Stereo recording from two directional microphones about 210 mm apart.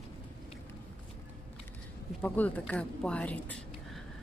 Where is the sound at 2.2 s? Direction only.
10° left (ahead or behind).